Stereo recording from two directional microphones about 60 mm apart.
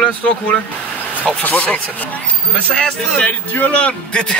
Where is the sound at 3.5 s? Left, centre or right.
Left.